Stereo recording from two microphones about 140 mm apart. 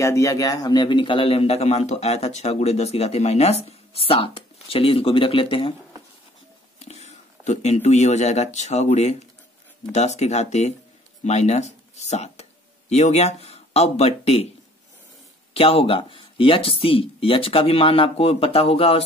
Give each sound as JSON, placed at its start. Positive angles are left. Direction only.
{"t": 0.0, "sound": "a man's voice", "side_deg": 20}
{"t": 6.8, "sound": "a man's voice", "side_deg": 50}
{"t": 15.5, "sound": "speech", "side_deg": 45}